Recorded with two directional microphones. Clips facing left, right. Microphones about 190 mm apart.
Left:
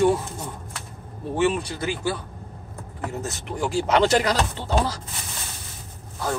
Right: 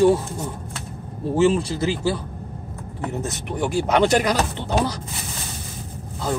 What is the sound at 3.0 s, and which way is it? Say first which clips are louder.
Speech: right 3 dB; 25° right (ahead or behind).